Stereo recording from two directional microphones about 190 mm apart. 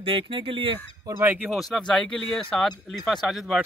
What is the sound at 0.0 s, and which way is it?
Fowl, 25° right (ahead or behind).